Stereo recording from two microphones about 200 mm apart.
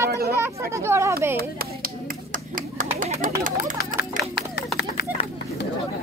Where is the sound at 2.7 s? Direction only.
40° right (ahead or behind).